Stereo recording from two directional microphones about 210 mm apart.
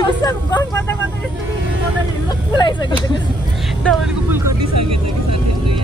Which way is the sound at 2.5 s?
20° left (ahead or behind).